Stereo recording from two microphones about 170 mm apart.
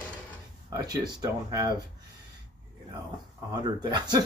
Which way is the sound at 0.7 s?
25° right (ahead or behind).